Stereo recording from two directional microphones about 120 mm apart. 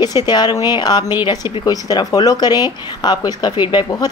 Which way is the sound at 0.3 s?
35° left (ahead or behind).